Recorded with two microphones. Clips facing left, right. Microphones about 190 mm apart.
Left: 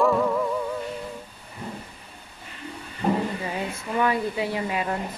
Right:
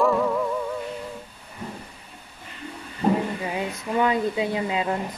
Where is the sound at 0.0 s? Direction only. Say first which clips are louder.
Even; centre (ahead or behind).